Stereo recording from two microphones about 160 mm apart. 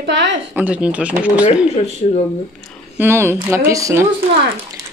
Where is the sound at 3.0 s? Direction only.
15° right (ahead or behind).